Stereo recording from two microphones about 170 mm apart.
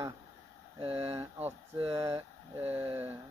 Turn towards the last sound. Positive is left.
turn(degrees=-10)  # may be behind; listen again after turning